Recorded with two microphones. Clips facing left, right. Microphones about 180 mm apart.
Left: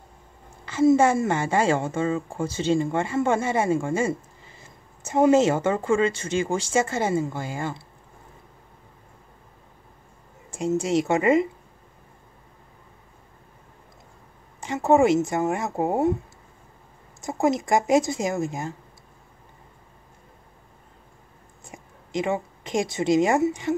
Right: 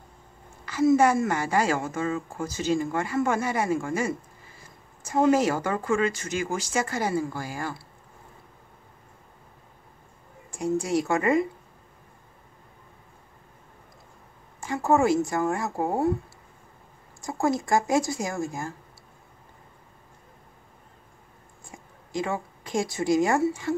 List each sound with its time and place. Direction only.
0.7 s a woman's voice: 25° left (ahead or behind)
10.5 s a woman's voice: 25° left (ahead or behind)
14.6 s a woman's voice: 20° left (ahead or behind)
17.2 s a woman's voice: 20° left (ahead or behind)
21.6 s speech: 20° left (ahead or behind)